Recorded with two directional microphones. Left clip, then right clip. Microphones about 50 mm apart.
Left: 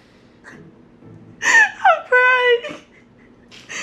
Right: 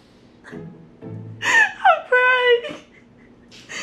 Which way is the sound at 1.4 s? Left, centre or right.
Centre.